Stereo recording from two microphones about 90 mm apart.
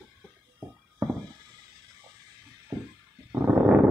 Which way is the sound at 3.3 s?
35° right (ahead or behind).